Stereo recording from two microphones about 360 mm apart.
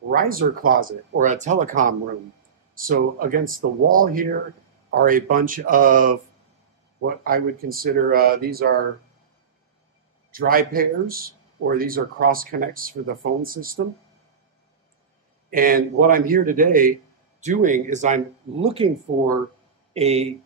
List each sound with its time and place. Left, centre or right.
0.1 s speech: right
10.3 s speech: right
15.5 s speech: right
19.9 s speech: centre